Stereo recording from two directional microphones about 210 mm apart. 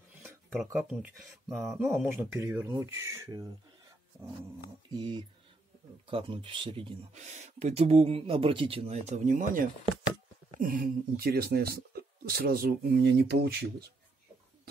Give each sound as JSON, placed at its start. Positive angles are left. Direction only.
{"t": 0.2, "sound": "speech", "side_deg": 0}
{"t": 4.9, "sound": "speech", "side_deg": -20}